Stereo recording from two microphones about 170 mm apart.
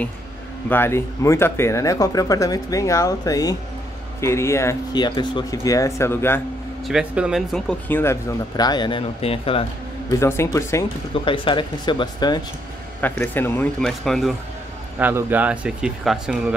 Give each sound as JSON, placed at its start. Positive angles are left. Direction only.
{"t": 0.7, "sound": "speech", "side_deg": 15}
{"t": 6.9, "sound": "speech", "side_deg": -5}
{"t": 8.0, "sound": "speech", "side_deg": 15}
{"t": 10.1, "sound": "speech", "side_deg": 15}
{"t": 11.2, "sound": "speech", "side_deg": 30}
{"t": 13.0, "sound": "speech", "side_deg": 10}
{"t": 15.0, "sound": "speech", "side_deg": -10}